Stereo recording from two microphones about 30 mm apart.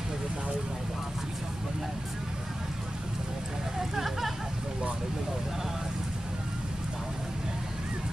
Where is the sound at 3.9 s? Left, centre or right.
Centre.